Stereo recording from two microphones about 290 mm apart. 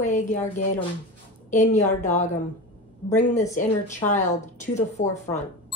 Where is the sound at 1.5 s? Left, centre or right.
Left.